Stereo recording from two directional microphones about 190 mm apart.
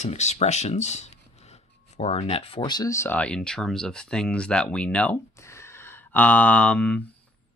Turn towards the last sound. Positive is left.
turn(degrees=5)  # may be behind; listen again after turning